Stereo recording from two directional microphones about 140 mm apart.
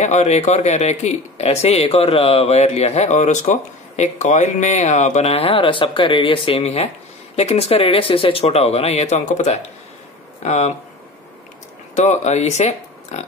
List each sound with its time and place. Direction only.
0.0 s speech: 55° left (ahead or behind)
11.9 s speech: 55° left (ahead or behind)